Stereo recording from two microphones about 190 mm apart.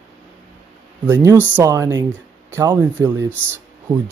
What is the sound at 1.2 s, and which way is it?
Speech, 10° right (ahead or behind).